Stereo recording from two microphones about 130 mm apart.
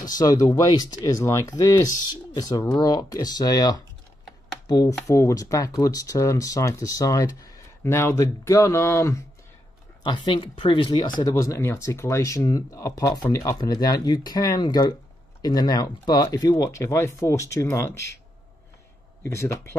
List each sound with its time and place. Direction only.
0.1 s speech: 30° left (ahead or behind)
10.0 s speech: 40° left (ahead or behind); by 18.1 s 20° left (ahead or behind)
19.2 s speech: 20° left (ahead or behind)